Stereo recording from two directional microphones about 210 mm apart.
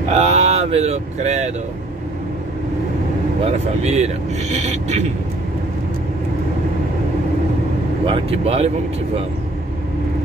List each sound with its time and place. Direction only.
0.1 s speech: 30° right (ahead or behind)
3.4 s speech: 30° right (ahead or behind)
8.0 s speech: 25° right (ahead or behind)